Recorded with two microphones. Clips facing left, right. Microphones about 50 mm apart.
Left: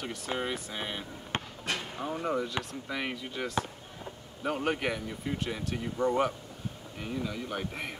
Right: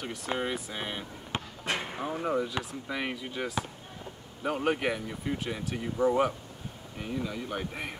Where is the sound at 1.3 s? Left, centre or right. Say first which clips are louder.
Left 1 dB; left.